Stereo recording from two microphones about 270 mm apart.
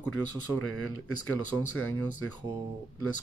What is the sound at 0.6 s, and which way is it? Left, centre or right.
Speech, left.